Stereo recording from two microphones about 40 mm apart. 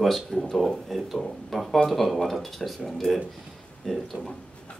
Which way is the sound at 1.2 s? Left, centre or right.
Centre.